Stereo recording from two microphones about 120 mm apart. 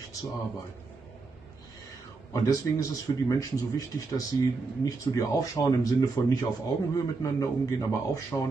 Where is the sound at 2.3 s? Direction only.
30° left (ahead or behind).